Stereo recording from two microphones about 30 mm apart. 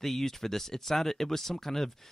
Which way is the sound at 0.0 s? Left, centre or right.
Centre.